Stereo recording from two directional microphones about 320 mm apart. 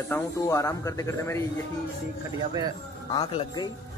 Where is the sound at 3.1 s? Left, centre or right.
Centre.